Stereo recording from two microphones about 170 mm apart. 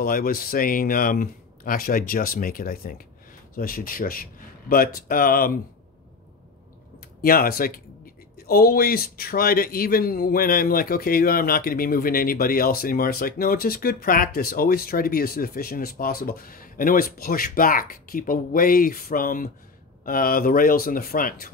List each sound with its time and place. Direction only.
0.0 s a man's voice: 60° left (ahead or behind)
7.2 s a man's voice: 60° left (ahead or behind)